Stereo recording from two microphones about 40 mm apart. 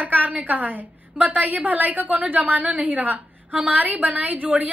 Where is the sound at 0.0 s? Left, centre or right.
Right.